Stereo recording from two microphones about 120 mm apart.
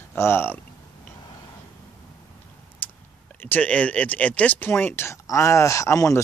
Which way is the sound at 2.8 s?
15° left (ahead or behind).